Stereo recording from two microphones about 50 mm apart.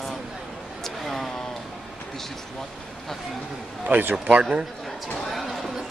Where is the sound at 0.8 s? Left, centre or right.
Centre.